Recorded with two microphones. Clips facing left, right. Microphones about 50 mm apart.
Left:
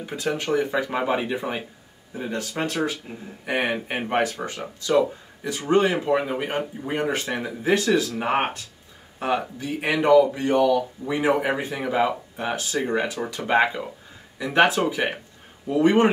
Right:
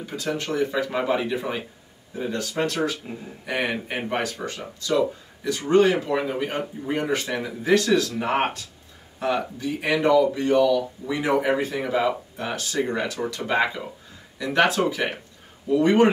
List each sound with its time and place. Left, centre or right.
0.0 s speech: left
9.6 s speech: left